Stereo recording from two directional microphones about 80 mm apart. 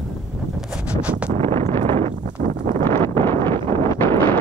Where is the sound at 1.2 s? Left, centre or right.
Centre.